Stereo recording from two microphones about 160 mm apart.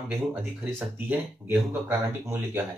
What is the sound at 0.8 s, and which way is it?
Speech, 10° right (ahead or behind).